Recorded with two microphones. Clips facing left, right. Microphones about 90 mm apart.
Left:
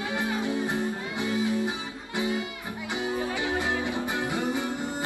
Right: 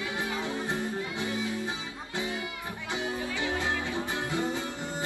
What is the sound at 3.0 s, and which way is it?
Music, 20° left (ahead or behind).